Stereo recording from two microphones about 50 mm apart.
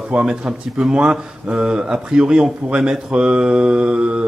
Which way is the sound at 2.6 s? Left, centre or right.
Centre.